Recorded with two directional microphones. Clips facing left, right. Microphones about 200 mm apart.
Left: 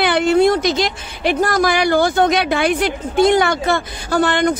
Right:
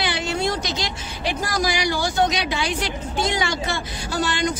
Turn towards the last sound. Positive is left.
turn(degrees=55)  # may be behind; listen again after turning